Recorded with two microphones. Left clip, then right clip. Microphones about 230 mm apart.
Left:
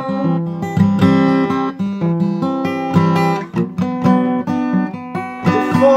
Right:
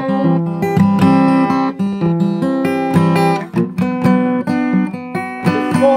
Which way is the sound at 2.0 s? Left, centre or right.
Right.